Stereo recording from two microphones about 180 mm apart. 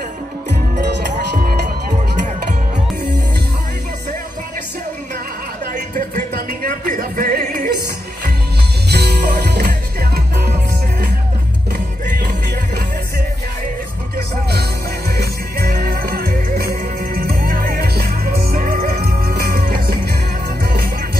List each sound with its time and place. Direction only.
0.5 s music: 70° right (ahead or behind)
1.3 s music: 55° right (ahead or behind)
5.7 s music: 50° right (ahead or behind)
8.8 s music: 65° right (ahead or behind)
11.7 s music: 55° right (ahead or behind)
14.1 s music: 60° right (ahead or behind)